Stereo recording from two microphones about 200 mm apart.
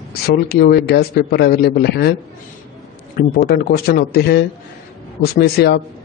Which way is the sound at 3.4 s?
55° left (ahead or behind).